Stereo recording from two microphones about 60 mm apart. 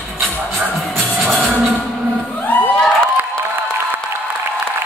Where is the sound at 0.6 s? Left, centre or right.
Centre.